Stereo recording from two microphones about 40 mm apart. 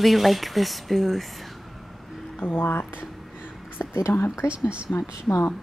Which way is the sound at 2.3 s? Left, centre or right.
Left.